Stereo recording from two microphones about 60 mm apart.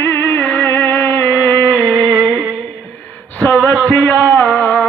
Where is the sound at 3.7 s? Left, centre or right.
Centre.